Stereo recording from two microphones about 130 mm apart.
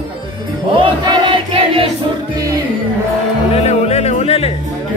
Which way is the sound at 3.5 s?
55° left (ahead or behind).